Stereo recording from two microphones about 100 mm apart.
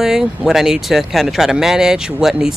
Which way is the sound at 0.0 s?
5° right (ahead or behind).